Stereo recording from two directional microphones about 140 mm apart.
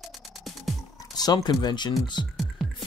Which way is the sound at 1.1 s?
30° left (ahead or behind).